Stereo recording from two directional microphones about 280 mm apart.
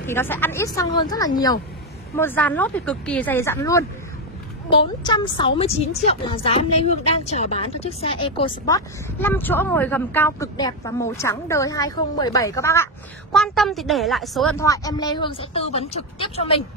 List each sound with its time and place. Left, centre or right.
0.0 s a woman's voice: centre
14.6 s a woman's voice: centre